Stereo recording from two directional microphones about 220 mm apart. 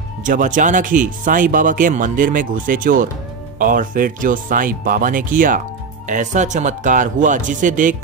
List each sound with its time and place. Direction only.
0.2 s speech: 35° right (ahead or behind)